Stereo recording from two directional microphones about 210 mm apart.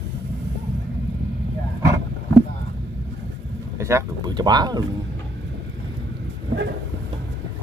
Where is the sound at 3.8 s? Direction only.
15° right (ahead or behind).